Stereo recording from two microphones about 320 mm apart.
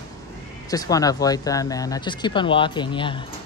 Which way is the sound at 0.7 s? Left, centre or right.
Centre.